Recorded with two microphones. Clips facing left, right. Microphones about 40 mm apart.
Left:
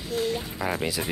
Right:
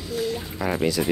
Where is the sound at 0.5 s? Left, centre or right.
Centre.